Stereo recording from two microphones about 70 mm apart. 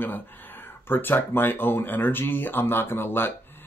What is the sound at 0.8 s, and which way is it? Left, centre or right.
Speech, left.